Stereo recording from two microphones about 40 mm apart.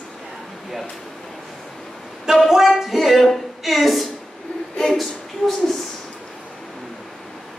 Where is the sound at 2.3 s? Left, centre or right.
Centre.